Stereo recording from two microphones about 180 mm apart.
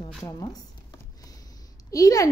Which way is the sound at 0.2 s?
20° left (ahead or behind).